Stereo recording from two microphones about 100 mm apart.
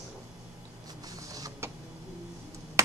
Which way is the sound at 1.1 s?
35° right (ahead or behind).